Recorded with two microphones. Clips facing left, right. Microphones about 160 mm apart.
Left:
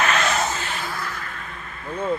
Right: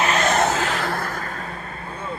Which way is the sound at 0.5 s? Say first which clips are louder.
Right 6 dB; 85° right.